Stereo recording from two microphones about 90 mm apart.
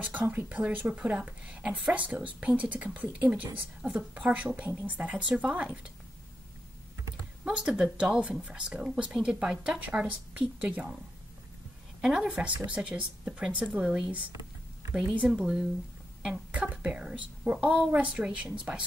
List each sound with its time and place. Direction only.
0.0 s speech: 20° right (ahead or behind)
7.4 s speech: 10° right (ahead or behind)
12.0 s speech: 10° right (ahead or behind)